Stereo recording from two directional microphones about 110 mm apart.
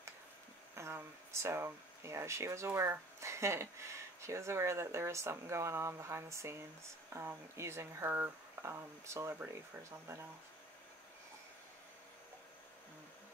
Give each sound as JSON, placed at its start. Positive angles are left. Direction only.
{"t": 0.7, "sound": "speech", "side_deg": -25}